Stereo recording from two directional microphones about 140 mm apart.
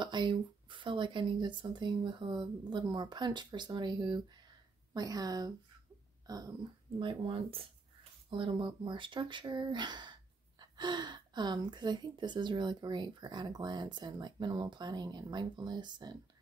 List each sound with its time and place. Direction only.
0.0 s speech: 35° right (ahead or behind)